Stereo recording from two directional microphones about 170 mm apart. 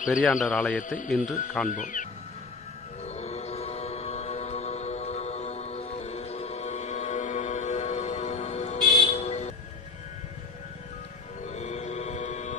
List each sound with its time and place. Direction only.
0.2 s a man's voice: centre (ahead or behind)
0.5 s a man's voice: 10° left (ahead or behind)
0.7 s speech: 50° left (ahead or behind)
3.1 s music: 40° left (ahead or behind)
11.4 s music: 40° left (ahead or behind)